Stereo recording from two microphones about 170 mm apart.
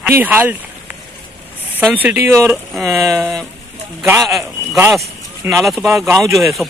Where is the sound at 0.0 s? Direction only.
10° right (ahead or behind).